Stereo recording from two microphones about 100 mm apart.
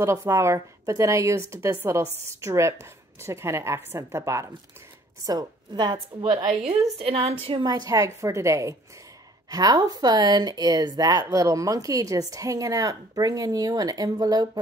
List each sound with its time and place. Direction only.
0.0 s a woman's voice: 30° right (ahead or behind)
5.2 s a woman's voice: 40° right (ahead or behind)
7.0 s a woman's voice: 75° right (ahead or behind)
7.5 s speech: 40° right (ahead or behind)